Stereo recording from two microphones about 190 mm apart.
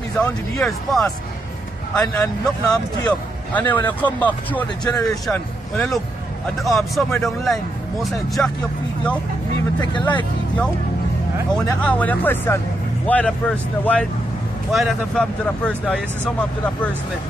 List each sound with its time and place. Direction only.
0.2 s speech: 5° left (ahead or behind)
9.8 s speech: 25° left (ahead or behind)
11.8 s speech: 10° left (ahead or behind)